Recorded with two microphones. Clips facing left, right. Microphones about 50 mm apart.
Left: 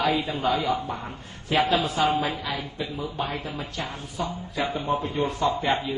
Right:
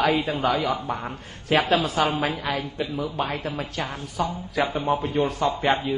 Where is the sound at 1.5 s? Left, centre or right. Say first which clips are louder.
Right 2 dB; right.